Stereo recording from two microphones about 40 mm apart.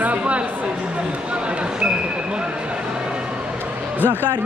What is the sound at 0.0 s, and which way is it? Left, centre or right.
Speech, right.